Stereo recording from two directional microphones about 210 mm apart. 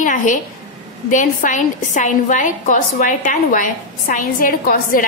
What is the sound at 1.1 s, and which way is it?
A woman's voice, 35° left (ahead or behind).